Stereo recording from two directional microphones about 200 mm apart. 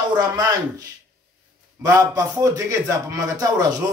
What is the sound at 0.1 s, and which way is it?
Speech, 20° right (ahead or behind).